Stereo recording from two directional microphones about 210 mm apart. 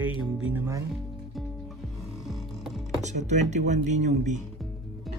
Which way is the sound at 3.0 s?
35° right (ahead or behind).